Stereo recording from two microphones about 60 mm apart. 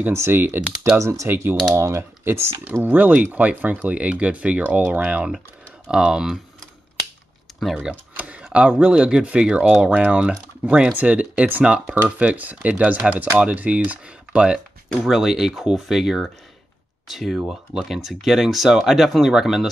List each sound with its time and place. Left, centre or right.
0.1 s speech: right
0.9 s speech: right
1.3 s speech: right
2.7 s speech: right
5.9 s speech: centre
7.9 s speech: centre
8.2 s a sound: right
8.5 s speech: centre
15.0 s speech: centre